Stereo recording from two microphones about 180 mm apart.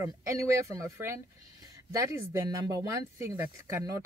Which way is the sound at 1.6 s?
15° right (ahead or behind).